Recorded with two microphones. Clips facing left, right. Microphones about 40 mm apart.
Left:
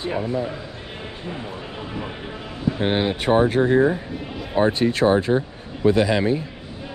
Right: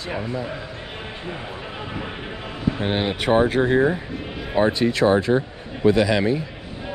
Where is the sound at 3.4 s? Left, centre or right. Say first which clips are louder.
Left 1 dB; right.